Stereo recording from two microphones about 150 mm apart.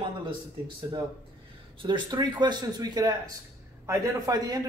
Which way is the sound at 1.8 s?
30° right (ahead or behind).